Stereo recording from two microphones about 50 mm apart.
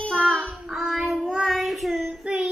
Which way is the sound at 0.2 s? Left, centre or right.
Centre.